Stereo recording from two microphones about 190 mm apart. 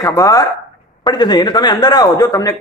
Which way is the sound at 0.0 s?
15° left (ahead or behind).